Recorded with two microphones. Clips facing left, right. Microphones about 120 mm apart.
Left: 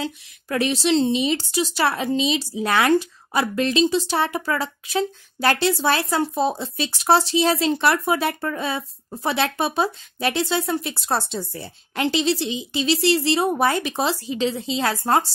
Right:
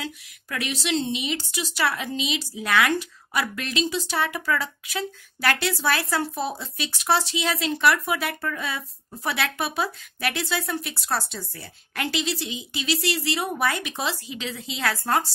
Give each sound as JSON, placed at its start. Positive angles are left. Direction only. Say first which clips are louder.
{"t": 0.0, "sound": "a woman's voice", "louder": "left 6 dB", "side_deg": 35}